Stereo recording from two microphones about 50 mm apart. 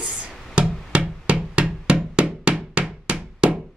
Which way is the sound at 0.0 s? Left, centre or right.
Centre.